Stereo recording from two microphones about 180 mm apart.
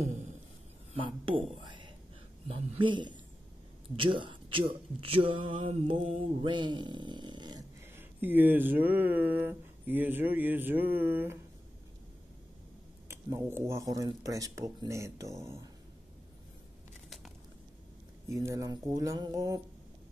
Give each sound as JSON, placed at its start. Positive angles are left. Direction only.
{"t": 0.9, "sound": "speech", "side_deg": -30}
{"t": 13.1, "sound": "speech", "side_deg": -15}
{"t": 18.3, "sound": "speech", "side_deg": -15}